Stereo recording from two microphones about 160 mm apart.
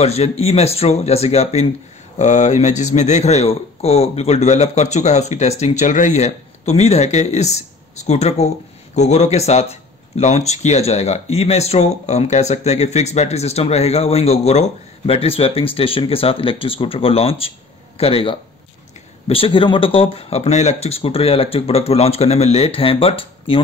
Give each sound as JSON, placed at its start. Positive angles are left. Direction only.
{"t": 0.0, "sound": "speech", "side_deg": 40}